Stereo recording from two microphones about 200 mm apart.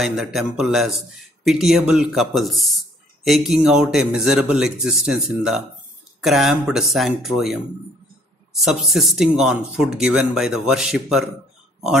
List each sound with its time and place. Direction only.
0.0 s speech: centre (ahead or behind)